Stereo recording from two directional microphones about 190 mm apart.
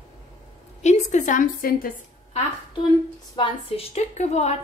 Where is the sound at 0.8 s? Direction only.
40° left (ahead or behind).